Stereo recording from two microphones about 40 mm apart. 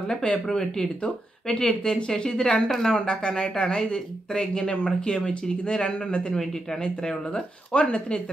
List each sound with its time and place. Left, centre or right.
0.1 s speech: left
6.3 s speech: centre
6.8 s speech: left